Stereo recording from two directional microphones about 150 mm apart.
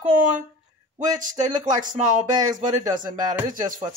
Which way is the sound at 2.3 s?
25° right (ahead or behind).